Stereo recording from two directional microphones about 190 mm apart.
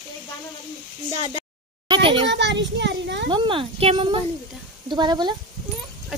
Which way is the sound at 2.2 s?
70° right (ahead or behind).